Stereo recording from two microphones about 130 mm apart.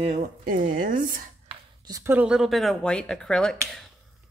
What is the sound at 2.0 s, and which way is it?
Speech, 15° right (ahead or behind).